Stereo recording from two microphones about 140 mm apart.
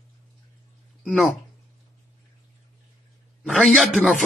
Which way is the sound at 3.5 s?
5° left (ahead or behind).